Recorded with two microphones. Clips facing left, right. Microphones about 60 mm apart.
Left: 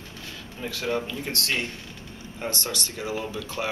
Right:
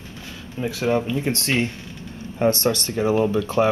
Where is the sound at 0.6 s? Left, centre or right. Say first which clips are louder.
Right 7 dB; centre.